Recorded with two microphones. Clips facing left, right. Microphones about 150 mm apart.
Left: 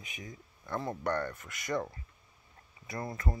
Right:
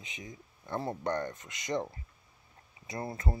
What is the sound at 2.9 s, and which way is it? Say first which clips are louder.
Speech: right 1 dB; 25° right (ahead or behind).